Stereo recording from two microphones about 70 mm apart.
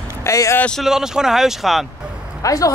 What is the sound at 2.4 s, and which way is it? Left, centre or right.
Speech, left.